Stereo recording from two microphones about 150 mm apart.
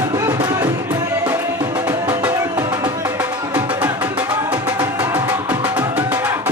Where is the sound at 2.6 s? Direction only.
30° right (ahead or behind).